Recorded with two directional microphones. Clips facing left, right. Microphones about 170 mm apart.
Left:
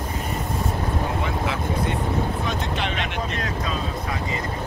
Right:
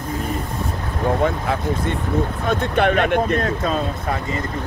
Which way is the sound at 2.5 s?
55° right (ahead or behind).